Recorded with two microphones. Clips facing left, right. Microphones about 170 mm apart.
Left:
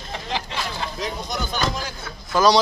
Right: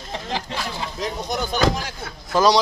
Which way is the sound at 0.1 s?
40° right (ahead or behind).